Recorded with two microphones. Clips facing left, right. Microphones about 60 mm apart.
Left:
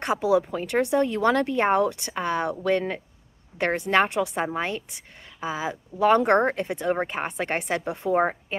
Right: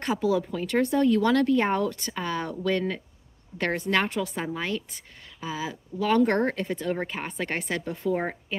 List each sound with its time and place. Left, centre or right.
0.0 s speech: centre